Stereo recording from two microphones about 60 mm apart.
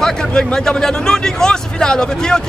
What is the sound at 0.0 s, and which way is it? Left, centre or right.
Speech, centre.